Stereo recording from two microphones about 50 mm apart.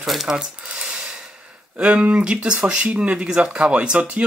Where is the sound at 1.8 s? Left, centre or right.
Right.